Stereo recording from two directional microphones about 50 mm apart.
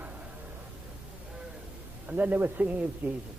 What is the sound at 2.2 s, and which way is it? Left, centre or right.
Speech, right.